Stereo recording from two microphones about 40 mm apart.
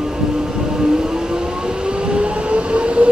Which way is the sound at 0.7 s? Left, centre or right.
Centre.